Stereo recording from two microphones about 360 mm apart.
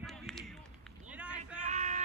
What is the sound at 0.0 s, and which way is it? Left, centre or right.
Run, centre.